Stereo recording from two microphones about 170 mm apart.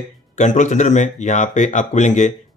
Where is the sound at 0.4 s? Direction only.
45° left (ahead or behind).